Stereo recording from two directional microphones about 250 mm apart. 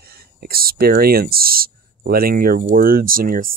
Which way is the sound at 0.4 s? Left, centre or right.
Right.